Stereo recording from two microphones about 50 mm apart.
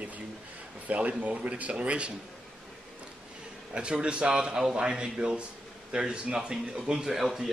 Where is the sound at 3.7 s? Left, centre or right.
Right.